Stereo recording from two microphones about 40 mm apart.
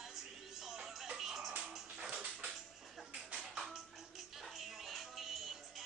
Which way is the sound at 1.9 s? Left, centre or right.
Centre.